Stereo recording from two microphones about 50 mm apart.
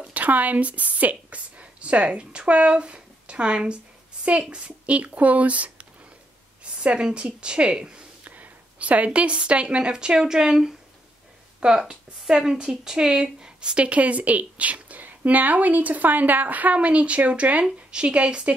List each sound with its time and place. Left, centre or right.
0.1 s a woman's voice: right
8.3 s speech: right; by 10.7 s centre
11.9 s speech: centre